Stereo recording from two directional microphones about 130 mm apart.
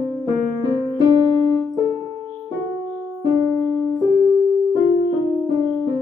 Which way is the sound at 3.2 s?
30° right (ahead or behind).